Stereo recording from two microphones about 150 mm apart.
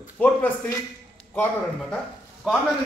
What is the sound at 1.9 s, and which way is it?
Speech, centre (ahead or behind).